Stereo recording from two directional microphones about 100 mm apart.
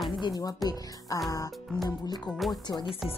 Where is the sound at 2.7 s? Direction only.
55° left (ahead or behind).